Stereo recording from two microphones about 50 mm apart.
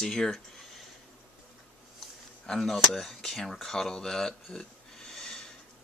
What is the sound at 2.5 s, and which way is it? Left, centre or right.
Speech, centre.